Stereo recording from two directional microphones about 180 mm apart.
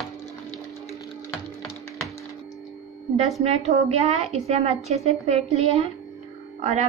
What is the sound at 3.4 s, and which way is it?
A woman's voice, 35° right (ahead or behind).